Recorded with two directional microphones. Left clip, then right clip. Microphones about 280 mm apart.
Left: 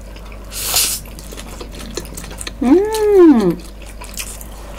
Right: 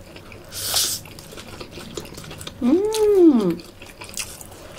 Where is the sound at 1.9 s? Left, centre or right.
Left.